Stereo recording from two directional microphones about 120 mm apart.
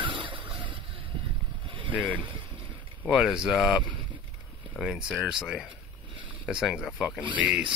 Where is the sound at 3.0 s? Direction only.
5° right (ahead or behind).